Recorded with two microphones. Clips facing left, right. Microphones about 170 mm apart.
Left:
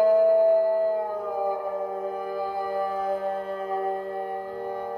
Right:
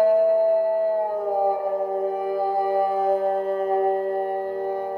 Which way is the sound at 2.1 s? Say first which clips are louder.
Right 6 dB; 45° right (ahead or behind).